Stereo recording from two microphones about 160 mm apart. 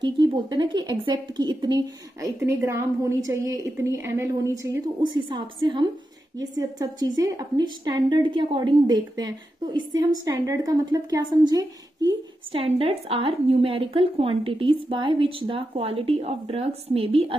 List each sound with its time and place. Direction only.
0.0 s a woman's voice: 30° right (ahead or behind)
12.5 s a woman's voice: 35° right (ahead or behind)